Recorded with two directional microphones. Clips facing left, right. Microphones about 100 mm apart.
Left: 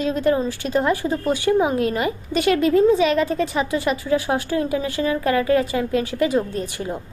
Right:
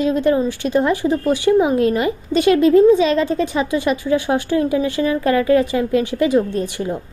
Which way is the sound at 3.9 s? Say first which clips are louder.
Right 3 dB; 25° left (ahead or behind).